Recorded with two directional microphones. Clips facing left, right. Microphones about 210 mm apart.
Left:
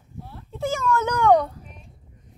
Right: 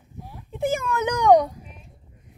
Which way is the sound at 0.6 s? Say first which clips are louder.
Even; 55° right (ahead or behind).